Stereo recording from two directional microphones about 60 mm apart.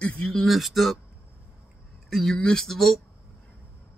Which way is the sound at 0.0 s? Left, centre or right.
Centre.